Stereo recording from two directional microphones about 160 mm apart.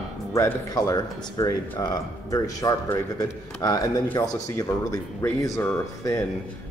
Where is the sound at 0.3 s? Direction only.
20° left (ahead or behind).